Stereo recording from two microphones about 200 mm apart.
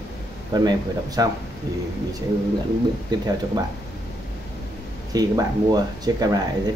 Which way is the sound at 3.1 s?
20° right (ahead or behind).